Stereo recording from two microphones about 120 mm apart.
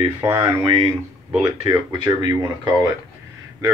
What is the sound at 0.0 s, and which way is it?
Speech, 30° right (ahead or behind).